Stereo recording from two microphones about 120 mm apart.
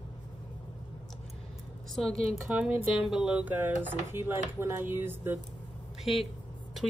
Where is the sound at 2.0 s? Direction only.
5° left (ahead or behind).